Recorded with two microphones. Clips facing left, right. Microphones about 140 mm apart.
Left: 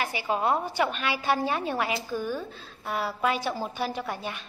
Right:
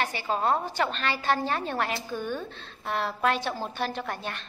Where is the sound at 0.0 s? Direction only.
10° left (ahead or behind).